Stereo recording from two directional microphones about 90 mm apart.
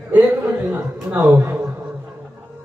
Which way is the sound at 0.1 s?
20° right (ahead or behind).